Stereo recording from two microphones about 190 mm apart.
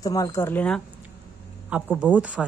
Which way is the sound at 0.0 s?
15° left (ahead or behind).